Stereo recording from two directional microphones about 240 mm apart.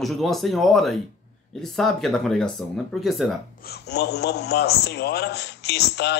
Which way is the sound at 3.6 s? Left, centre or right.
Left.